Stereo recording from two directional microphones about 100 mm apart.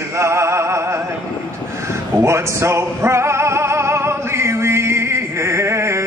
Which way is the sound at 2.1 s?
25° right (ahead or behind).